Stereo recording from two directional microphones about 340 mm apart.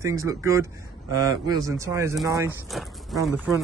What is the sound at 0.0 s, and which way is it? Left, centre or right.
A man's voice, centre.